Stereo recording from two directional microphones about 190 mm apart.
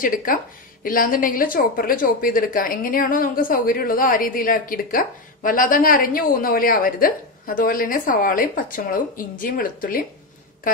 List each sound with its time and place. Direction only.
0.0 s a woman's voice: 45° left (ahead or behind)